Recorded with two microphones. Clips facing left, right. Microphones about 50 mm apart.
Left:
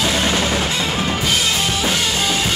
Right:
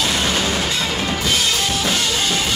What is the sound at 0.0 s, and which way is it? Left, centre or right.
Music, centre.